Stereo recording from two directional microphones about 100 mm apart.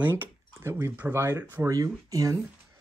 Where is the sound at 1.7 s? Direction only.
35° right (ahead or behind).